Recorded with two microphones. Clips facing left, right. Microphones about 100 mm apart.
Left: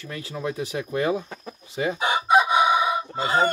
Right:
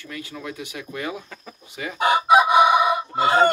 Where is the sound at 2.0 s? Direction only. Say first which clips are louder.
Right 4 dB; 70° right (ahead or behind).